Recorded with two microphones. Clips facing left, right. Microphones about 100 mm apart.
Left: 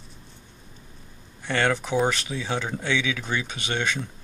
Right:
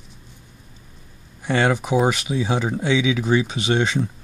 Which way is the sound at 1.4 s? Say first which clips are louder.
Right 4 dB; 15° right (ahead or behind).